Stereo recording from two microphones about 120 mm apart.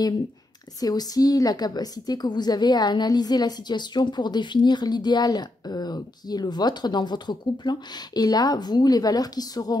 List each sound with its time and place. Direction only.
0.7 s a woman's voice: 30° left (ahead or behind)